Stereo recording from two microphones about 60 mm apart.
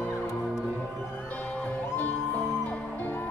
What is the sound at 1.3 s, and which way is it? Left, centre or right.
Music, left.